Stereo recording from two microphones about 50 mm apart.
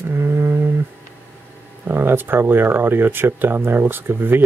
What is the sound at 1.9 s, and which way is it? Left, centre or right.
Speech, right.